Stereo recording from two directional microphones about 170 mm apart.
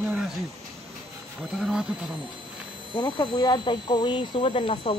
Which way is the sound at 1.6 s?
5° right (ahead or behind).